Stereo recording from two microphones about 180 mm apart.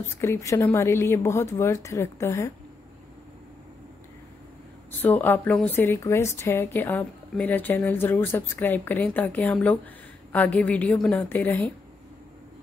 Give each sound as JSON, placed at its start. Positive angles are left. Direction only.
{"t": 0.1, "sound": "a woman's voice", "side_deg": 15}
{"t": 5.0, "sound": "a woman's voice", "side_deg": 10}